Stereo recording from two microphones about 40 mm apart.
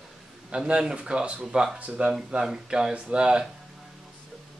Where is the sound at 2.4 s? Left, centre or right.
Centre.